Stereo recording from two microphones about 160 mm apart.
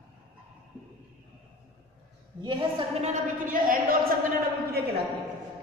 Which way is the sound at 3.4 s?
60° right (ahead or behind).